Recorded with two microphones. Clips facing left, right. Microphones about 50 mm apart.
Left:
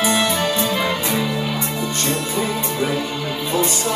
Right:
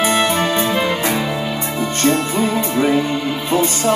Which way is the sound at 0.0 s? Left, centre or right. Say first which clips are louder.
Right 3 dB; right.